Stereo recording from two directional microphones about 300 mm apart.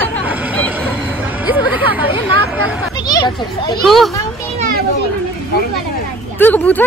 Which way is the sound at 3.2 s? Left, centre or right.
Centre.